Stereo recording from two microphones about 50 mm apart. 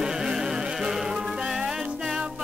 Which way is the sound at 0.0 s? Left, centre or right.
Centre.